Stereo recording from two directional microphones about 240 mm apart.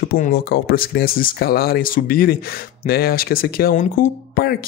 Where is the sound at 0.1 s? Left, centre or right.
Left.